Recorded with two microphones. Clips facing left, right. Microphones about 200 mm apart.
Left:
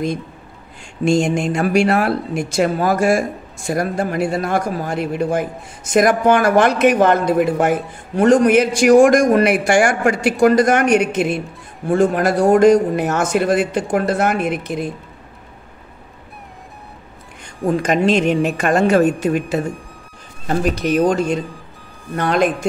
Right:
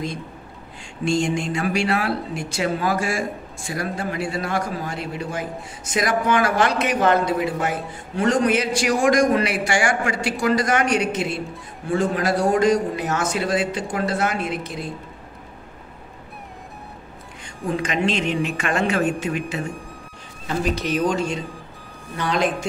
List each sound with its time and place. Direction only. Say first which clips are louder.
1.3 s a man's voice: left 6 dB; 45° left (ahead or behind)
17.6 s a man's voice: left 7 dB; 40° left (ahead or behind)
20.9 s a man's voice: left 8 dB; 50° left (ahead or behind)